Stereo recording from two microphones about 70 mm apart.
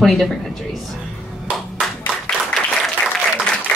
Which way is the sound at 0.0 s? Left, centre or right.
Centre.